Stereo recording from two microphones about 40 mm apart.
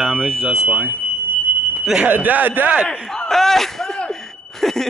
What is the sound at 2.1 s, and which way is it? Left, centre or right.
Speech, right.